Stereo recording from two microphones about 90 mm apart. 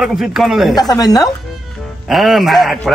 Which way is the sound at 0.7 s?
45° left (ahead or behind).